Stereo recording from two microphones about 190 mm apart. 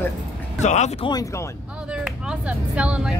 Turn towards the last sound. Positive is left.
turn(degrees=-5)  # may be behind; listen again after turning